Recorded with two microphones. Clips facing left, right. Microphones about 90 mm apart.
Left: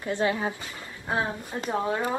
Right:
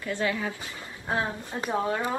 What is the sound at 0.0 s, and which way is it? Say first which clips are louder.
A woman's voice: left 3 dB; 25° left (ahead or behind).